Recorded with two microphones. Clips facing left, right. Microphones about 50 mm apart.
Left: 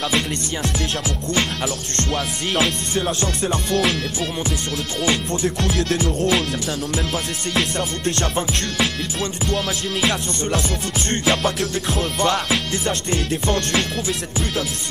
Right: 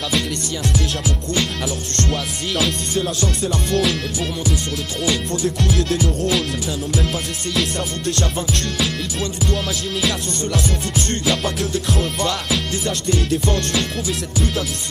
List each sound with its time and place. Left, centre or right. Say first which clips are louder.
2.1 s music: left 1 dB; left
5.0 s music: even; left
8.2 s music: even; left